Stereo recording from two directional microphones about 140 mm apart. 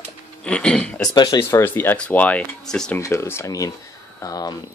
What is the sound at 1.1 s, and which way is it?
Speech, 30° left (ahead or behind).